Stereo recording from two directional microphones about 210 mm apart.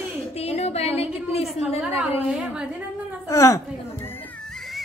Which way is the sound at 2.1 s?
5° right (ahead or behind).